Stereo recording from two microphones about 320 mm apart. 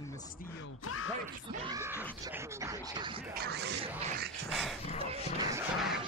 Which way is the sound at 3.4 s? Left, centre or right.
Right.